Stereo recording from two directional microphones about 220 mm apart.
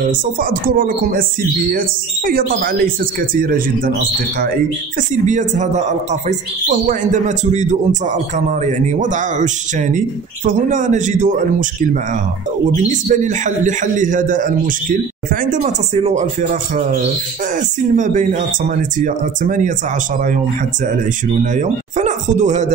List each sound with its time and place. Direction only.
0.4 s a man's voice: 40° right (ahead or behind)
2.2 s a man's voice: 40° right (ahead or behind)
5.1 s a man's voice: 35° right (ahead or behind)
12.8 s a man's voice: 35° right (ahead or behind)
17.9 s a man's voice: 35° right (ahead or behind)
21.5 s speech: 35° right (ahead or behind)